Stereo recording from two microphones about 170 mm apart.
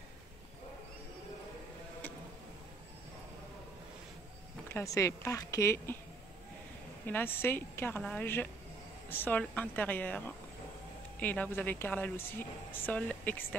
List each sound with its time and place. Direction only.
4.6 s speech: 15° left (ahead or behind)
7.1 s speech: 10° left (ahead or behind)